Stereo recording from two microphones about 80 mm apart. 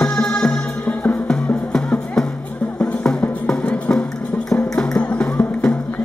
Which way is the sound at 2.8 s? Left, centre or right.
Centre.